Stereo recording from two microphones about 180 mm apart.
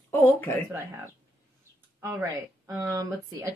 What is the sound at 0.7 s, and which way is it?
A woman's voice, 15° right (ahead or behind).